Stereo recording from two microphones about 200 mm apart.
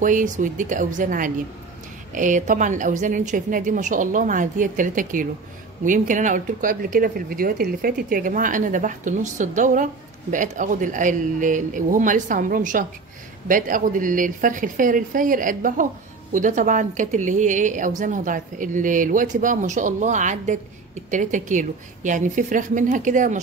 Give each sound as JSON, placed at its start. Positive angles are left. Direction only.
{"t": 0.0, "sound": "a woman's voice", "side_deg": -40}